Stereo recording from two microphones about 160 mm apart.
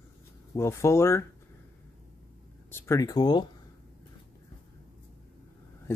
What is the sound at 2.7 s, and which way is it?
Speech, 15° left (ahead or behind).